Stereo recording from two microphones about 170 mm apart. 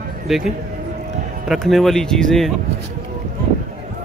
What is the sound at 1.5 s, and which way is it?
Speech, centre (ahead or behind).